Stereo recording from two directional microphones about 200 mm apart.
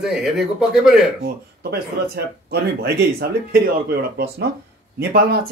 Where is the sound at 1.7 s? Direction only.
50° right (ahead or behind).